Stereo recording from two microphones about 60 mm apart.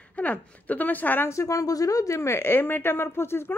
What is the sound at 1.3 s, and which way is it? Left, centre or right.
Speech, left.